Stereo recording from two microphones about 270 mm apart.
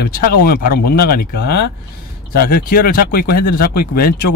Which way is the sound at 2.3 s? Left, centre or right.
Left.